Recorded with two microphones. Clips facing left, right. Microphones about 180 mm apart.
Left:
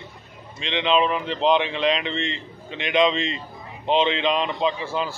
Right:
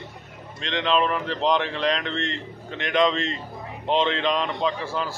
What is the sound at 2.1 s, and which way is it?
Speech, 90° left.